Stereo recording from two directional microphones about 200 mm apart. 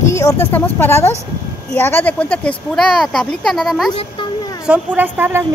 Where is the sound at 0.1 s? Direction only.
15° left (ahead or behind).